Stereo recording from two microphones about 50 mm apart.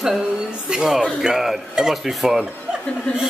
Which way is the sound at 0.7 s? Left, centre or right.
Centre.